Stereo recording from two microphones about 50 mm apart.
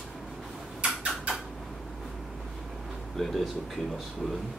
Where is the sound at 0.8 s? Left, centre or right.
Centre.